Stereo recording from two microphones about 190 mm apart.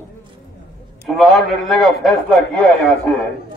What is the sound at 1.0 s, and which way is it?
A man's voice, centre (ahead or behind).